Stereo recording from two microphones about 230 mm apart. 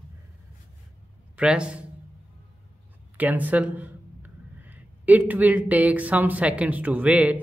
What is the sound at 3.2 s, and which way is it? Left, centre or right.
Speech, centre.